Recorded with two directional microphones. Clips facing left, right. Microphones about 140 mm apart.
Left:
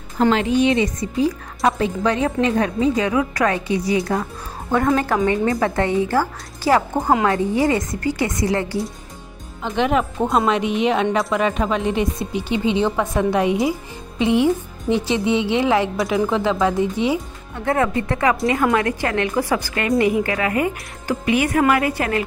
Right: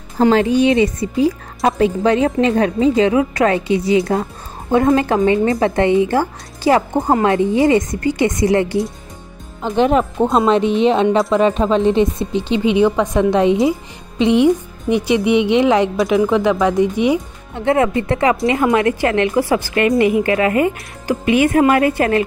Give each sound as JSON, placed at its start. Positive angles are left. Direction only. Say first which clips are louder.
{"t": 0.7, "sound": "speech", "louder": "right 4 dB", "side_deg": 30}
{"t": 1.6, "sound": "a woman's voice", "louder": "right 4 dB", "side_deg": -30}
{"t": 9.6, "sound": "a woman's voice", "louder": "right 5 dB", "side_deg": -35}